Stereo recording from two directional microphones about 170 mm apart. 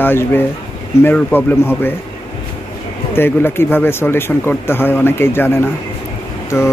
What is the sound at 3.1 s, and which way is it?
Speech, 15° left (ahead or behind).